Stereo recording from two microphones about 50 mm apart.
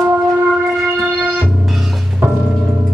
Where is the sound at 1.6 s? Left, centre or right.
Centre.